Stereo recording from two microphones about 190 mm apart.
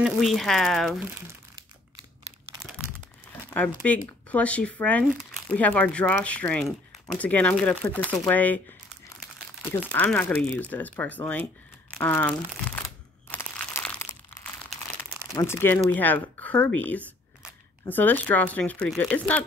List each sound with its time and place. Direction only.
0.0 s speech: centre (ahead or behind)
1.1 s crumpling: 15° right (ahead or behind)
3.4 s speech: 10° left (ahead or behind)
9.6 s speech: 10° left (ahead or behind)
13.3 s crumpling: 10° left (ahead or behind)
15.3 s speech: 15° left (ahead or behind)